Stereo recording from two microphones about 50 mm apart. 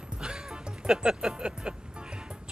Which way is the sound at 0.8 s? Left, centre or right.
Centre.